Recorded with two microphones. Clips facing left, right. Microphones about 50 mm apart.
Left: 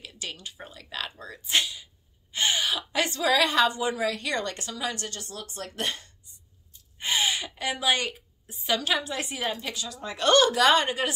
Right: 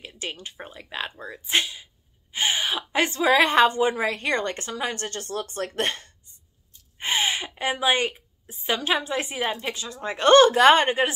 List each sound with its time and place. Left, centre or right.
0.0 s a woman's voice: right